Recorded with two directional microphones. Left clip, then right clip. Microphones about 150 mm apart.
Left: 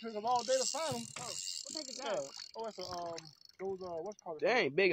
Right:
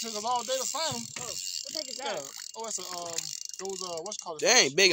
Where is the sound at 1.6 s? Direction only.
65° left (ahead or behind).